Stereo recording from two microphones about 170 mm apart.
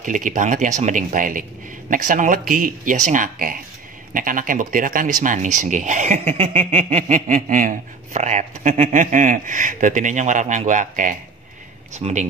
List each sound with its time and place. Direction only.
0.0 s speech: 50° right (ahead or behind)